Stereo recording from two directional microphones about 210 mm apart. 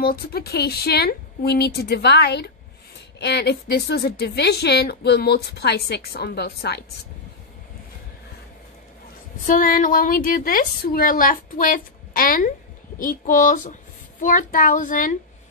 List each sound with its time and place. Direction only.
0.0 s a woman's voice: 45° left (ahead or behind)
9.5 s a woman's voice: 40° left (ahead or behind)